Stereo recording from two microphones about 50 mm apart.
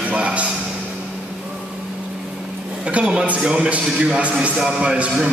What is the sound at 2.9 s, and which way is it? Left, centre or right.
A man's voice, right.